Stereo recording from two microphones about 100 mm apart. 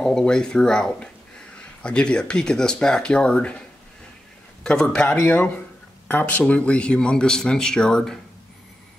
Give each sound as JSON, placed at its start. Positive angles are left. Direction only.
{"t": 0.0, "sound": "speech", "side_deg": 5}
{"t": 4.6, "sound": "speech", "side_deg": 10}